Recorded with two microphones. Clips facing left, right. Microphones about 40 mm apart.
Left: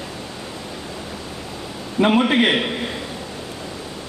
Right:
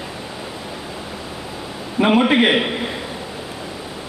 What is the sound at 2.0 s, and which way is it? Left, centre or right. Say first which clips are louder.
Speech: right 2 dB; centre.